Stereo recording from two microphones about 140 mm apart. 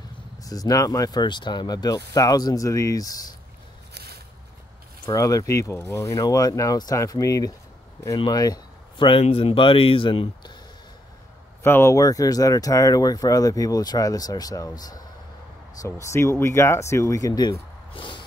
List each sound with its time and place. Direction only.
0.4 s speech: 25° left (ahead or behind)
5.0 s speech: 25° left (ahead or behind)
11.6 s speech: 15° left (ahead or behind); by 18.2 s 35° left (ahead or behind)